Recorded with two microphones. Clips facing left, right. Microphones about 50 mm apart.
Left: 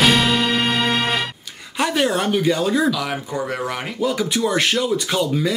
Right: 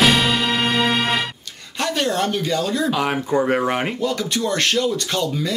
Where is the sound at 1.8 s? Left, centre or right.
Centre.